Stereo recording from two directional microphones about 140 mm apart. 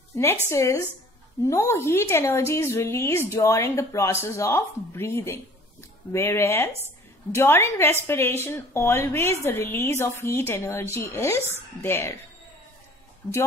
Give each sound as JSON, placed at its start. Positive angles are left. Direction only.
{"t": 0.5, "sound": "a woman's voice", "side_deg": 20}